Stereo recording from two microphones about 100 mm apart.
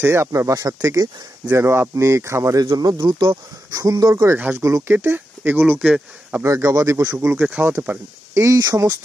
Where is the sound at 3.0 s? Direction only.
55° right (ahead or behind).